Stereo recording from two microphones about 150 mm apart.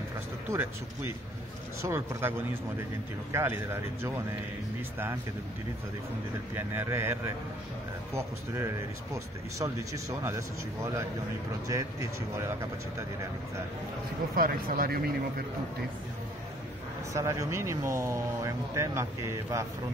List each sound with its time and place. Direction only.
0.5 s speech: 15° right (ahead or behind)
6.5 s speech: 15° right (ahead or behind)
14.3 s speech: 75° right (ahead or behind)
17.1 s speech: 20° right (ahead or behind)